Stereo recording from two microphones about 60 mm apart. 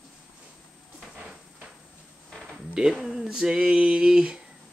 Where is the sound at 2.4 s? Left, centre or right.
Centre.